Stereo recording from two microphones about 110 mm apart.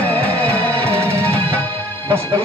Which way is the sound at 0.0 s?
15° left (ahead or behind).